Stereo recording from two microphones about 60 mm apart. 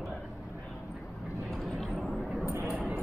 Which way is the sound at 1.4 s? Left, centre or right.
Centre.